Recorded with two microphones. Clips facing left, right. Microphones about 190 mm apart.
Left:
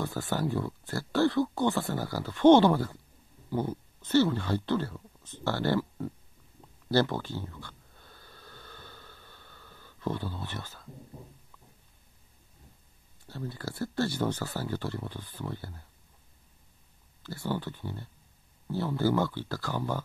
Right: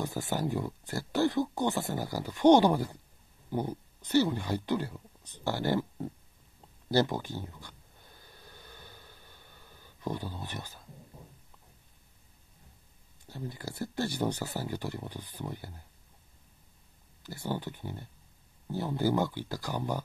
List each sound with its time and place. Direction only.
0.0 s speech: 20° right (ahead or behind)
6.9 s snort: 15° right (ahead or behind)
13.3 s speech: 15° right (ahead or behind)
17.2 s speech: 15° right (ahead or behind)